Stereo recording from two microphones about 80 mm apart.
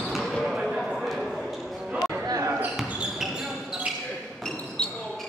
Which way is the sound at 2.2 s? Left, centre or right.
Right.